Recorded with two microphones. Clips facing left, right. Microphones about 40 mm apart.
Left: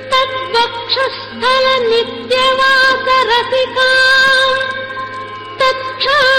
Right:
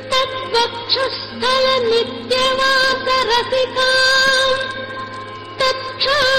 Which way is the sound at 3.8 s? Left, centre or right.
Centre.